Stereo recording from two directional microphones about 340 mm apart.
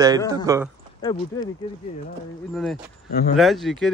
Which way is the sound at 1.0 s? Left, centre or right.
Centre.